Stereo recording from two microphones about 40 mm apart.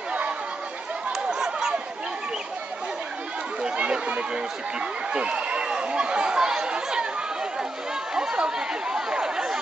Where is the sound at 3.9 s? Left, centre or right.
Right.